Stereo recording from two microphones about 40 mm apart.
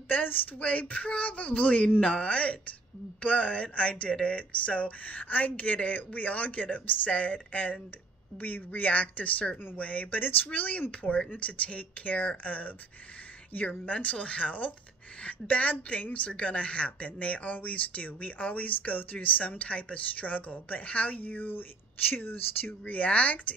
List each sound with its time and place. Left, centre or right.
0.1 s speech: left
10.2 s speech: left
13.7 s speech: left